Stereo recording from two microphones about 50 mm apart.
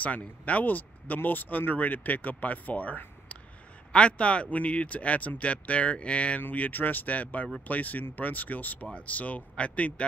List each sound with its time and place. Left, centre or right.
0.0 s speech: left
6.7 s speech: left